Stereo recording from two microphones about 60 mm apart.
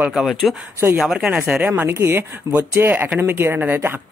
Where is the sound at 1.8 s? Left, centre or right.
Right.